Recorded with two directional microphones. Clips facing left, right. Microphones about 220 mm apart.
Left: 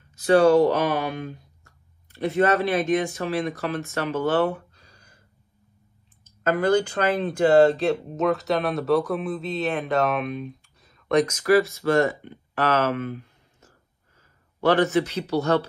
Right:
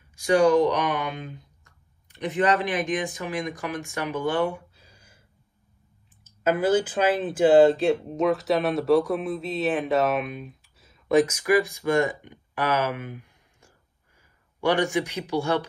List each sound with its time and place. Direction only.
0.1 s speech: 15° right (ahead or behind)
6.2 s a man's voice: 5° right (ahead or behind)